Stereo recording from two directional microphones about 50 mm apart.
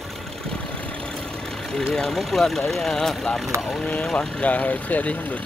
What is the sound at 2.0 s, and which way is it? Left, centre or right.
Speech, centre.